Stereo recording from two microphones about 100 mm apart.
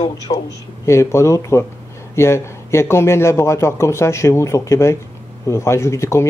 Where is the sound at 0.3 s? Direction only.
65° left (ahead or behind).